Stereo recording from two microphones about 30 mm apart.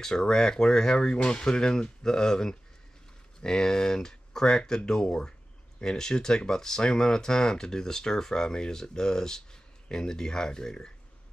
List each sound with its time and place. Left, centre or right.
0.0 s speech: left
0.9 s speech: left